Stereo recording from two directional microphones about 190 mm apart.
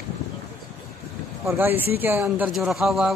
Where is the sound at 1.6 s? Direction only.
10° right (ahead or behind).